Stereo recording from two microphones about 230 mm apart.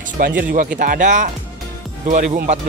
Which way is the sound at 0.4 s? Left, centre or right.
Right.